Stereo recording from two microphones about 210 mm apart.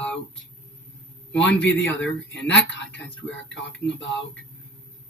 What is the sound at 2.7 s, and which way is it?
Speech, 60° left (ahead or behind).